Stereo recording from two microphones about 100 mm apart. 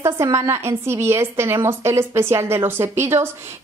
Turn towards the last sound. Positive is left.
turn(degrees=-25)  # may be behind; listen again after turning